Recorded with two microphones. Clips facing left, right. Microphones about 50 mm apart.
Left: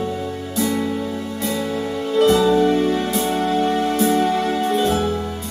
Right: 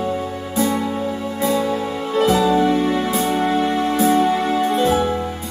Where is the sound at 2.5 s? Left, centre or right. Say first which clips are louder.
Even; right.